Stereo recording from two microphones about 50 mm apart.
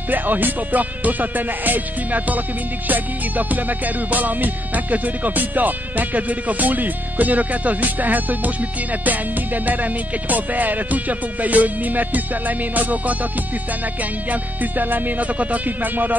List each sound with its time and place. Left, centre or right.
0.1 s music: right
10.3 s music: right
14.3 s music: right